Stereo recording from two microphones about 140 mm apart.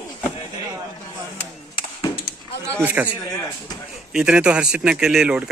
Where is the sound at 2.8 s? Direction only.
10° right (ahead or behind).